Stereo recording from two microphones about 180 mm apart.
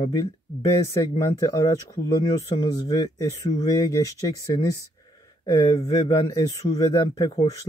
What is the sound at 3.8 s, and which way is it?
Speech, 20° left (ahead or behind).